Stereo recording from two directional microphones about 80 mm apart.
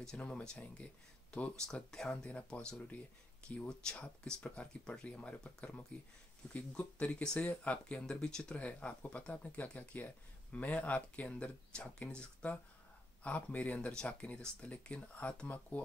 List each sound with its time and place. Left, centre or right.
0.0 s speech: centre